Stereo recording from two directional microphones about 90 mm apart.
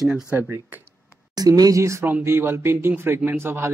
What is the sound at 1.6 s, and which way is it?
Speech, 35° right (ahead or behind).